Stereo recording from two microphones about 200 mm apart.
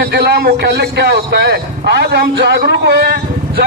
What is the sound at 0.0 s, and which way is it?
A man's voice, 55° right (ahead or behind).